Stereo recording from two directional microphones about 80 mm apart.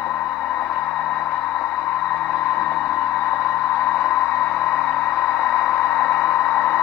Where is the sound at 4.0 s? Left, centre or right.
Left.